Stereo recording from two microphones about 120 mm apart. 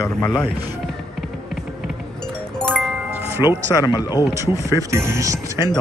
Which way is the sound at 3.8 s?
35° left (ahead or behind).